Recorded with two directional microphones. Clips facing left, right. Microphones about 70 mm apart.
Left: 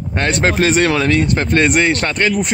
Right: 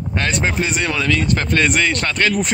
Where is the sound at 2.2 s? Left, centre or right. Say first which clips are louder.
Even; centre.